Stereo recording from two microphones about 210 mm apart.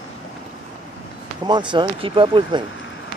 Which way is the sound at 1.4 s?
20° right (ahead or behind).